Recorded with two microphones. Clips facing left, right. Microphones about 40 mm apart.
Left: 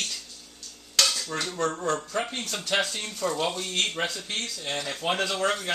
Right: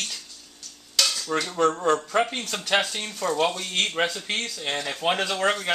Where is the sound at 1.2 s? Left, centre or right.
Centre.